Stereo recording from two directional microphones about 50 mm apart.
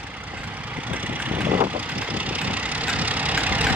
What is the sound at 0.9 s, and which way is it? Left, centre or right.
Vehicle, right.